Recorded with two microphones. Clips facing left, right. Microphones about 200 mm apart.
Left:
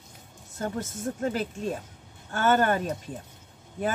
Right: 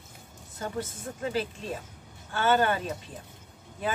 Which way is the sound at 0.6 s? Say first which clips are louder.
Left 3 dB; 45° left (ahead or behind).